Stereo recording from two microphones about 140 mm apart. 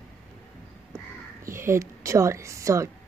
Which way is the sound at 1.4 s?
20° right (ahead or behind).